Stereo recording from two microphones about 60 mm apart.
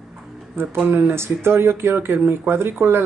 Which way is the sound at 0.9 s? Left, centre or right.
Right.